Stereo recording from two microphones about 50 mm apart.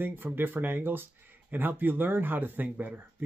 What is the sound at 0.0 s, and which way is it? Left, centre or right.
Speech, right.